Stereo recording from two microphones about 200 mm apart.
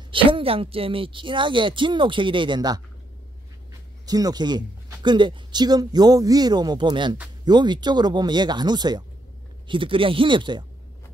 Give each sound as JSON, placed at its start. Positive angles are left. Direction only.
{"t": 0.1, "sound": "speech", "side_deg": -25}
{"t": 4.0, "sound": "speech", "side_deg": -20}